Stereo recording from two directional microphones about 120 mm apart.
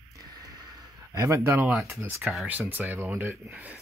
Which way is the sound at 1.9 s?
20° right (ahead or behind).